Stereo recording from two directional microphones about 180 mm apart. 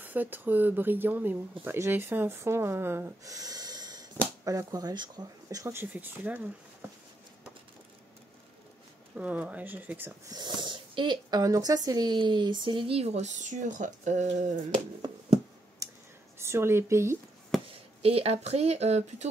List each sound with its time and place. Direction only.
0.0 s speech: 10° right (ahead or behind)
9.1 s speech: 10° right (ahead or behind); by 14.6 s 40° right (ahead or behind)
15.8 s clicking: 15° right (ahead or behind)
16.3 s speech: 15° right (ahead or behind)
17.6 s speech: 35° right (ahead or behind)